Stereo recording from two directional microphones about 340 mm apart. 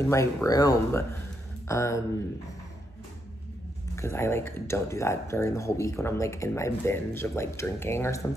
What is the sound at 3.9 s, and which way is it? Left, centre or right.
Speech, centre.